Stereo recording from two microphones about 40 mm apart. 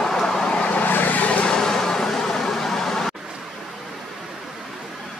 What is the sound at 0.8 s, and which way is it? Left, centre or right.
Vehicle, left.